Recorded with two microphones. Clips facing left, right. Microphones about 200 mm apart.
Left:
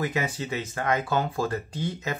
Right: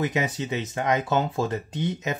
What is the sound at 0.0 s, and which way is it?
Speech, 20° right (ahead or behind).